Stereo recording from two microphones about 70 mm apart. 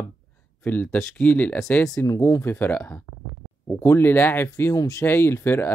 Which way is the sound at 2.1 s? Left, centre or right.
Left.